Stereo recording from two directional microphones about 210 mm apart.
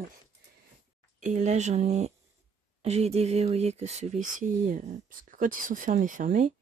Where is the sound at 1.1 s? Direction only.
35° right (ahead or behind).